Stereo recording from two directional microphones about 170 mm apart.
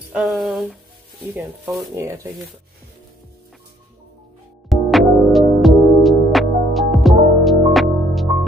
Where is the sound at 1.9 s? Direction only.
15° right (ahead or behind).